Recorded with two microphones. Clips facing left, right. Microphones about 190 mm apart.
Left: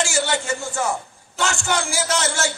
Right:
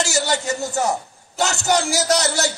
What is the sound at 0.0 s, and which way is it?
A man's voice, 40° right (ahead or behind).